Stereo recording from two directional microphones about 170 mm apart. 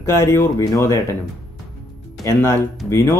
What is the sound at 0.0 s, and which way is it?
Speech, 15° left (ahead or behind).